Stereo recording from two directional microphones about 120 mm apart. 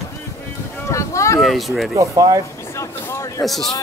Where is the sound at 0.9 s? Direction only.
25° left (ahead or behind).